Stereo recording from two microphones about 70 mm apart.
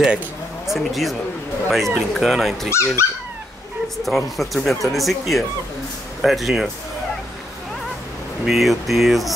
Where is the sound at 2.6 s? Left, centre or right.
Left.